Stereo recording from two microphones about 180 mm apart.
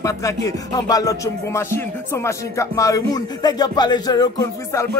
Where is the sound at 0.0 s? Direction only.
15° left (ahead or behind).